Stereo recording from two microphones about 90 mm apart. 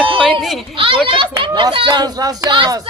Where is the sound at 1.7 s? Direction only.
65° right (ahead or behind).